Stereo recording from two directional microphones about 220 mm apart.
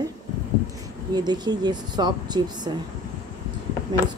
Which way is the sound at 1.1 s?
20° right (ahead or behind).